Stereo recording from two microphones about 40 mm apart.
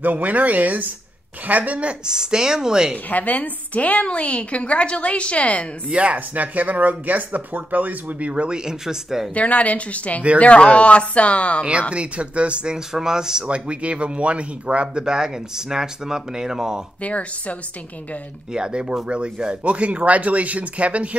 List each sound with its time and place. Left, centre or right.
0.0 s speech: right
2.0 s speech: centre
3.1 s a woman's voice: left
5.9 s speech: right
8.5 s speech: centre
9.3 s a woman's voice: left
11.9 s speech: right
12.7 s speech: centre
13.5 s speech: right
15.0 s speech: centre
17.0 s a woman's voice: left
18.5 s speech: right